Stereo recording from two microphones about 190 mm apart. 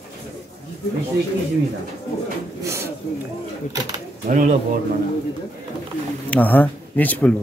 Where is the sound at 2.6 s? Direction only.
15° right (ahead or behind).